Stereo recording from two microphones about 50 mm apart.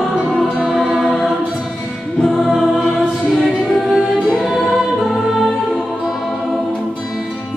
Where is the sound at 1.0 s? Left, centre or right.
Centre.